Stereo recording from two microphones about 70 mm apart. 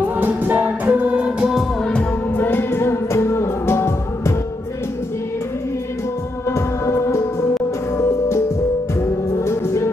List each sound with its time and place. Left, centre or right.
0.2 s music: right
2.3 s music: left
9.4 s music: left